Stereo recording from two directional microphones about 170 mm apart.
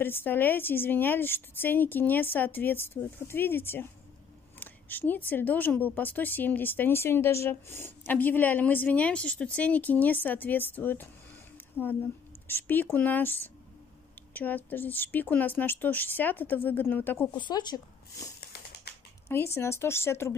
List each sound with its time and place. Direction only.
0.0 s speech: 10° left (ahead or behind)
17.3 s speech: 25° left (ahead or behind)